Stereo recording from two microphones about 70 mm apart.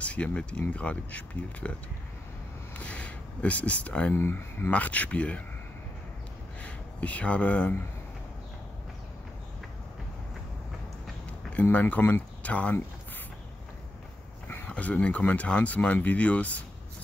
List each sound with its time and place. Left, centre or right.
0.0 s speech: centre
2.8 s a sound: left
4.1 s speech: left
6.6 s speech: left
11.7 s speech: left
14.7 s speech: centre